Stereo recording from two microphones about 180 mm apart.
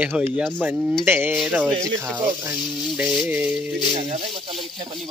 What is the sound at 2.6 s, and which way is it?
Speech, centre (ahead or behind).